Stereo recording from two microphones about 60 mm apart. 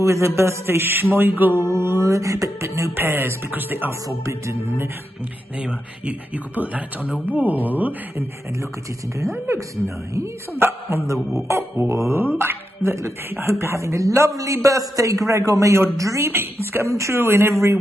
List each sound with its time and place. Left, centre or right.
0.0 s a man's voice: right
1.6 s speech: right
2.6 s a man's voice: right
3.0 s speech: right
5.6 s speech: centre
9.5 s a man's voice: right
10.5 s a man's voice: right
11.4 s a man's voice: right
16.3 s speech: right
16.9 s a man's voice: right